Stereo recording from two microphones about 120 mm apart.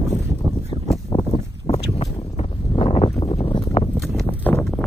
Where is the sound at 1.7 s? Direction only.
55° left (ahead or behind).